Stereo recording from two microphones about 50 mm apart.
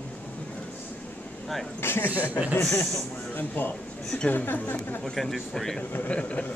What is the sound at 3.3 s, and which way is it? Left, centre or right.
A man's voice, left.